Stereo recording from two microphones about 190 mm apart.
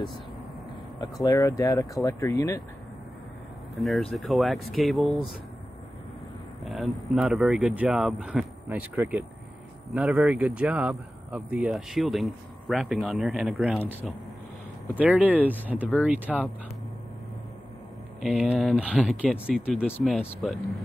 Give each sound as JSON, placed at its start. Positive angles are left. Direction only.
{"t": 0.9, "sound": "speech", "side_deg": 20}
{"t": 3.7, "sound": "a man's voice", "side_deg": 0}
{"t": 6.6, "sound": "a man's voice", "side_deg": 0}
{"t": 8.6, "sound": "speech", "side_deg": -15}
{"t": 9.8, "sound": "a man's voice", "side_deg": 0}
{"t": 18.2, "sound": "a man's voice", "side_deg": 0}